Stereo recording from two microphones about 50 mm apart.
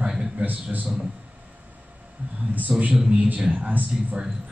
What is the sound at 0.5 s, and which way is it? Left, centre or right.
Speech, right.